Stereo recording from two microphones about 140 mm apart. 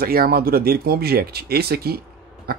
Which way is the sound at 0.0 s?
90° right.